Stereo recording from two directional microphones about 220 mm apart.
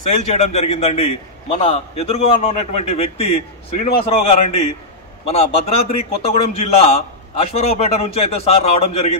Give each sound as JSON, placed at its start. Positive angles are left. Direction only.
{"t": 0.3, "sound": "a man's voice", "side_deg": 30}